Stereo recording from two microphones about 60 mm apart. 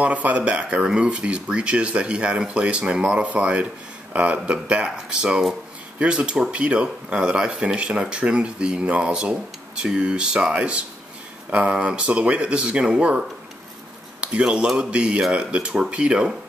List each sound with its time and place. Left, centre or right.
0.0 s speech: right
14.2 s speech: centre